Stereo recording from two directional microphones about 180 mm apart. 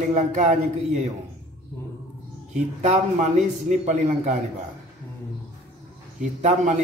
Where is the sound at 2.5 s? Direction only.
40° right (ahead or behind).